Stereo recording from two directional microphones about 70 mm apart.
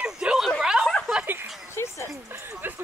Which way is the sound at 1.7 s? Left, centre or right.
Left.